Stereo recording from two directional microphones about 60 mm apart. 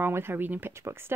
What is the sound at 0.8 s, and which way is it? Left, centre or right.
Speech, right.